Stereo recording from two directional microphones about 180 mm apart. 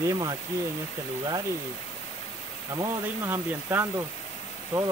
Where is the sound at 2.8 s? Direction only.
10° right (ahead or behind).